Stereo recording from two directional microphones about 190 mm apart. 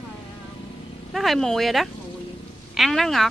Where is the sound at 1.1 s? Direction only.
Centre (ahead or behind).